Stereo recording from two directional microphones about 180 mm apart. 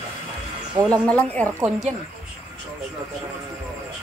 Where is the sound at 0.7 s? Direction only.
20° right (ahead or behind).